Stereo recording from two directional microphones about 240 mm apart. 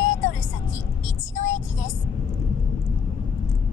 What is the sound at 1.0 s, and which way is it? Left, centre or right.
Vehicle, left.